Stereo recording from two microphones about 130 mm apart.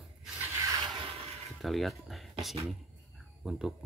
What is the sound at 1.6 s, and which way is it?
Speech, centre (ahead or behind).